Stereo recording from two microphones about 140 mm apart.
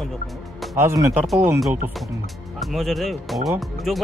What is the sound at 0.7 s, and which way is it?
Speech, 20° right (ahead or behind).